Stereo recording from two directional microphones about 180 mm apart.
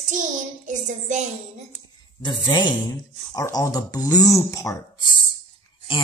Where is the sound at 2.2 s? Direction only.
25° left (ahead or behind).